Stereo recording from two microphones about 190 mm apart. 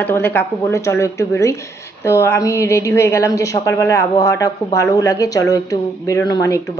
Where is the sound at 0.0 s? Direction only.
10° left (ahead or behind).